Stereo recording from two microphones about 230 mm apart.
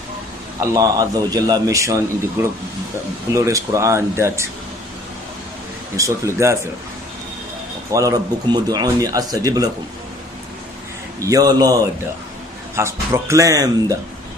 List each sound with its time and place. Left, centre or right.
0.6 s a man's voice: centre
3.3 s a man's voice: centre
5.9 s a man's voice: centre
7.9 s a man's voice: centre
11.1 s a man's voice: centre